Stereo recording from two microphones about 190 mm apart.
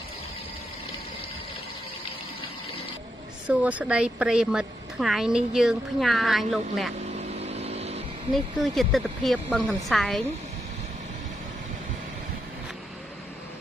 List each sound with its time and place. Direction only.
3.4 s a woman's voice: 5° right (ahead or behind)
7.2 s vehicle: 35° right (ahead or behind)
8.6 s a woman's voice: centre (ahead or behind)